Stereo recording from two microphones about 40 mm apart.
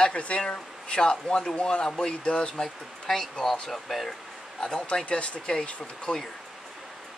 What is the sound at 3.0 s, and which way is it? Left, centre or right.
Speech, centre.